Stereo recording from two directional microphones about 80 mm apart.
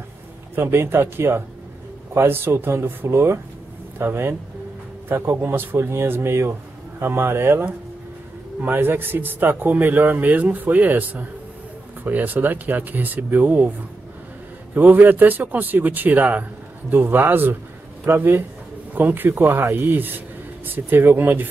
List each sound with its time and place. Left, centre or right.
0.6 s speech: right